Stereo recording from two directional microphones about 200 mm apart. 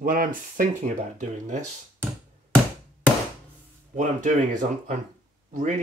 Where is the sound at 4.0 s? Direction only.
35° right (ahead or behind).